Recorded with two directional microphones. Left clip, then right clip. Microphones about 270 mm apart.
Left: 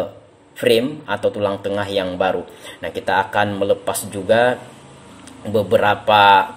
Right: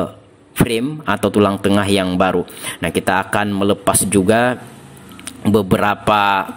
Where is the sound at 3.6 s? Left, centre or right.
Right.